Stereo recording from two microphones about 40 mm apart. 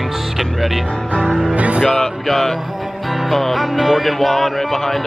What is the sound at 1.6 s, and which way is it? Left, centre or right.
Speech, right.